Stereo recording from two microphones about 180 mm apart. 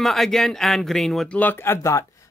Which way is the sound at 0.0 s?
Centre (ahead or behind).